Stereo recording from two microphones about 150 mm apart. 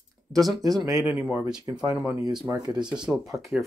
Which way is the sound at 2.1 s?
25° right (ahead or behind).